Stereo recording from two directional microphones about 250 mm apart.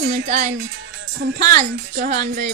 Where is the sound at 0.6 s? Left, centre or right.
Right.